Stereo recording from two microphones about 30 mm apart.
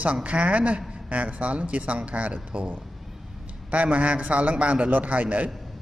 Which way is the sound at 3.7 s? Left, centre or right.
Right.